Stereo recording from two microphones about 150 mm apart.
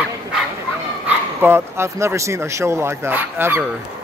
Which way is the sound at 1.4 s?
15° right (ahead or behind).